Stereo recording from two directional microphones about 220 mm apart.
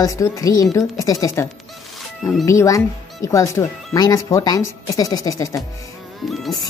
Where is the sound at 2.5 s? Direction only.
15° left (ahead or behind).